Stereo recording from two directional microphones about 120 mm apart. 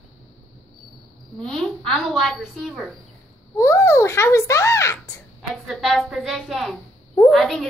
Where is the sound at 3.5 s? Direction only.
25° left (ahead or behind).